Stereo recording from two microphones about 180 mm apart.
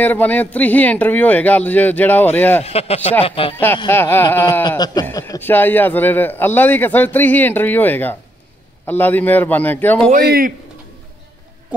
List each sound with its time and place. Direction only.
0.0 s a man's voice: 10° left (ahead or behind)
2.6 s speech: 35° left (ahead or behind)
3.9 s a man's voice: 10° left (ahead or behind)
4.6 s a sound: 20° left (ahead or behind)
5.0 s a man's voice: 15° left (ahead or behind)
10.2 s speech: 55° right (ahead or behind)